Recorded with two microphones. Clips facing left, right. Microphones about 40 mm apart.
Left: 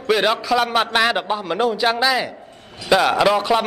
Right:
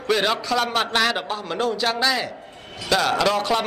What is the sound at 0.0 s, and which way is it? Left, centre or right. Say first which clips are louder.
A man's voice: left 3 dB; centre.